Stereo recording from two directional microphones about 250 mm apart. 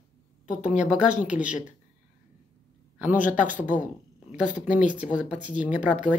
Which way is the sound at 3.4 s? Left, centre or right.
Left.